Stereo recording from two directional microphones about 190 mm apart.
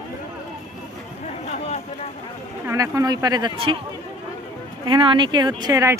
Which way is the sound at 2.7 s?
15° right (ahead or behind).